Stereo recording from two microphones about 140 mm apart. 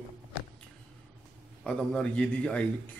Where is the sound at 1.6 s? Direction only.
10° left (ahead or behind).